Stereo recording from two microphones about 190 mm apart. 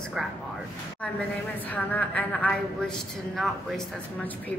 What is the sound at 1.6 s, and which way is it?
A woman's voice, 10° left (ahead or behind).